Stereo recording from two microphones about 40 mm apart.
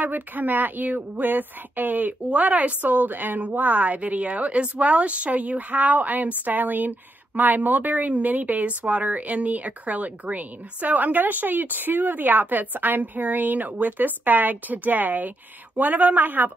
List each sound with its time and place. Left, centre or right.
0.0 s speech: right